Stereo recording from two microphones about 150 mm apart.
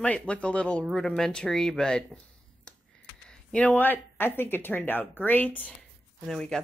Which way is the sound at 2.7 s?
5° left (ahead or behind).